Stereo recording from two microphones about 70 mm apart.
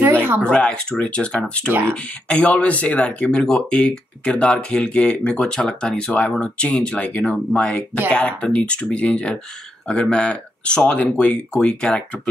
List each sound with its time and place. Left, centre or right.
0.0 s a sound: right
0.4 s speech: centre
1.7 s speech: right
2.2 s speech: centre